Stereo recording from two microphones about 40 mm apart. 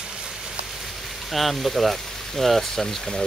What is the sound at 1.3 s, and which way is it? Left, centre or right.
Speech, centre.